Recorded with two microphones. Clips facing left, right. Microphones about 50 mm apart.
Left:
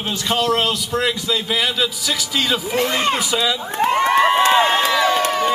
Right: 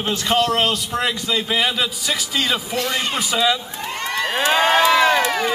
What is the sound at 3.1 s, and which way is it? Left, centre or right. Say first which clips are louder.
Speech: left 1 dB; right.